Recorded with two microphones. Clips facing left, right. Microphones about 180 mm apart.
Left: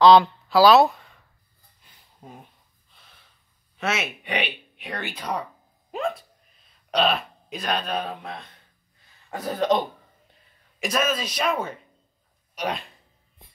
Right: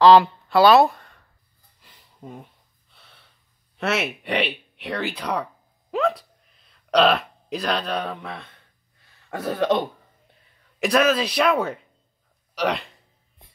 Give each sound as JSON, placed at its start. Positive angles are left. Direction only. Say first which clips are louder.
{"t": 0.0, "sound": "speech", "louder": "right 1 dB", "side_deg": -5}
{"t": 1.8, "sound": "a sound", "louder": "right 6 dB", "side_deg": -70}
{"t": 2.9, "sound": "snort", "louder": "right 2 dB", "side_deg": -65}
{"t": 3.7, "sound": "a man's voice", "louder": "right 3 dB", "side_deg": -65}